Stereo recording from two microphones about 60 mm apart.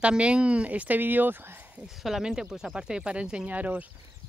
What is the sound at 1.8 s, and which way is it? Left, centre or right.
Speech, centre.